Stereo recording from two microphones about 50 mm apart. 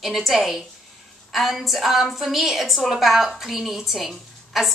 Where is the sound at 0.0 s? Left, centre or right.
Centre.